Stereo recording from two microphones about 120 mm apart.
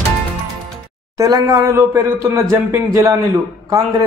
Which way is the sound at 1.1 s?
30° right (ahead or behind).